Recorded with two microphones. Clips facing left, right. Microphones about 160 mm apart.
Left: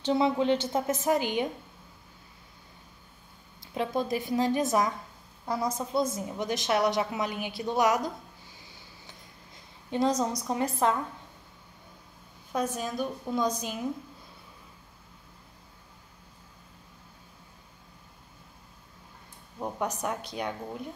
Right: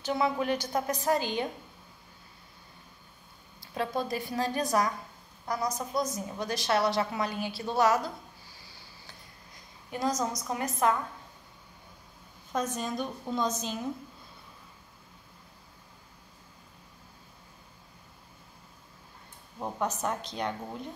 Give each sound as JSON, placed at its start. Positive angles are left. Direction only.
{"t": 0.0, "sound": "a woman's voice", "side_deg": 25}
{"t": 3.6, "sound": "a woman's voice", "side_deg": 20}
{"t": 9.8, "sound": "a woman's voice", "side_deg": 25}
{"t": 12.5, "sound": "a woman's voice", "side_deg": 10}
{"t": 19.6, "sound": "a woman's voice", "side_deg": 10}